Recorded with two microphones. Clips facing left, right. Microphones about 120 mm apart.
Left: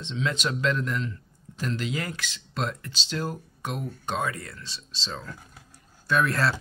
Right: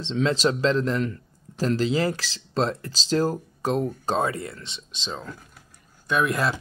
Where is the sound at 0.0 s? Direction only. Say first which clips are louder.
Right 7 dB; 35° right (ahead or behind).